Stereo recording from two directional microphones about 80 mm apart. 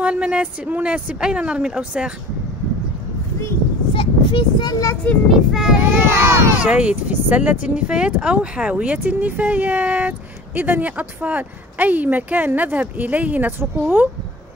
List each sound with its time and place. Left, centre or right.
0.0 s a woman's voice: centre
3.9 s a sound: left
5.1 s a child's voice: centre
5.5 s a child's voice: centre
5.8 s speech: right
6.6 s speech: centre